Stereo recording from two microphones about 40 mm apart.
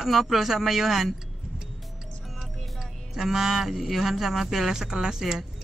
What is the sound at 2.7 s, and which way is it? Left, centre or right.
Speech, centre.